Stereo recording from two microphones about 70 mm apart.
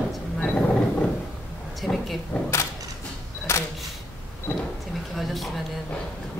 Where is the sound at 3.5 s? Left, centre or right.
Left.